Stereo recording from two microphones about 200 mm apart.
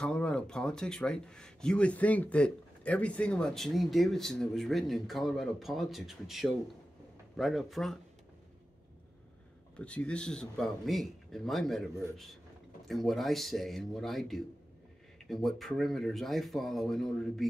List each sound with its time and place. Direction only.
0.0 s speech: 5° left (ahead or behind)
9.8 s speech: 5° left (ahead or behind)